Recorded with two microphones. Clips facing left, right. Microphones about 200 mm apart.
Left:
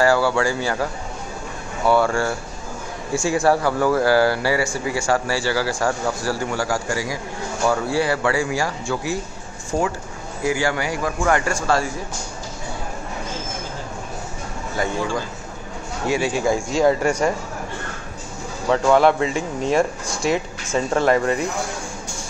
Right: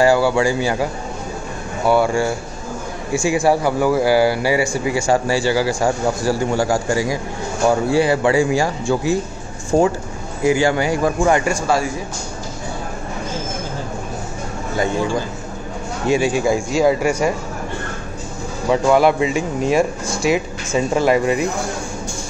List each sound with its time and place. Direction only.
0.0 s speech: 15° right (ahead or behind)
1.9 s speech: 15° right (ahead or behind)
10.4 s speech: 20° right (ahead or behind)
16.1 s speech: 15° right (ahead or behind)
18.7 s speech: 10° right (ahead or behind)